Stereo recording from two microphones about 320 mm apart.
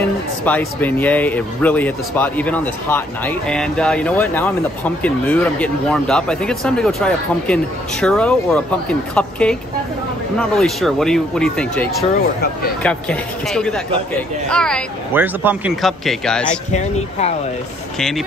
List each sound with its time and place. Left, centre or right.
0.5 s speech: centre
12.0 s speech: left
12.8 s speech: centre
16.7 s speech: left
17.9 s speech: centre